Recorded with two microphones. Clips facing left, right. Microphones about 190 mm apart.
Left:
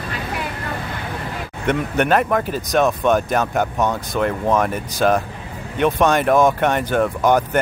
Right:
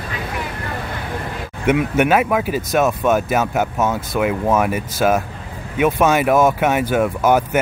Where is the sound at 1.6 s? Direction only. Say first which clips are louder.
Right 3 dB; 5° right (ahead or behind).